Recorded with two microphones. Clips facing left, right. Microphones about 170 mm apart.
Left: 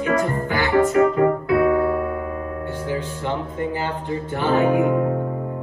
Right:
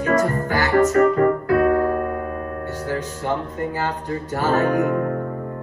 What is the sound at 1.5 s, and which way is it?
Music, 45° right (ahead or behind).